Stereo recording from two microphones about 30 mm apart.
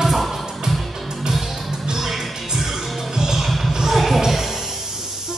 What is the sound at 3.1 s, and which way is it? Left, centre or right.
Music, right.